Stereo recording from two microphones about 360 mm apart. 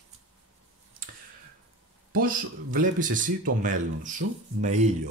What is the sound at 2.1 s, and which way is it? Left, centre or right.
Speech, right.